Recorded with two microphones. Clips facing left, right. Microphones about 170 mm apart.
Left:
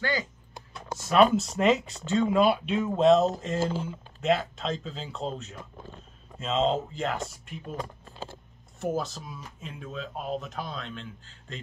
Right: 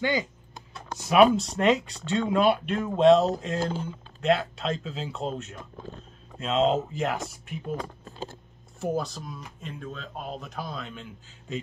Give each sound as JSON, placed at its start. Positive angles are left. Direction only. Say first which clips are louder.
{"t": 0.0, "sound": "speech", "louder": "right 3 dB", "side_deg": -20}
{"t": 1.3, "sound": "speech", "louder": "even", "side_deg": 5}
{"t": 8.9, "sound": "speech", "louder": "right 1 dB", "side_deg": 0}